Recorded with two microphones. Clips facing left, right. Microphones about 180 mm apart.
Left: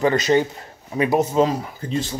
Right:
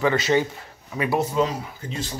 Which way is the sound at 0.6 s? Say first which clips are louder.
Left 6 dB; 30° left (ahead or behind).